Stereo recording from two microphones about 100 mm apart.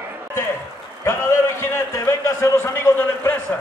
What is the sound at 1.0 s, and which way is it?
A man's voice, 25° left (ahead or behind).